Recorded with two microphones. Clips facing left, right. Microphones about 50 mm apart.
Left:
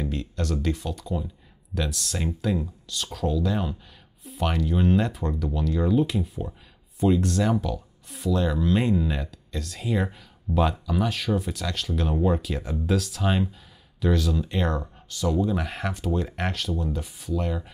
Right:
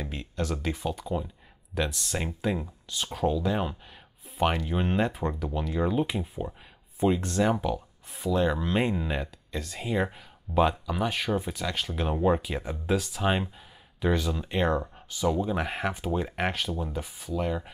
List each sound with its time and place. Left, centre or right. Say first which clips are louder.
0.0 s speech: left 3 dB; centre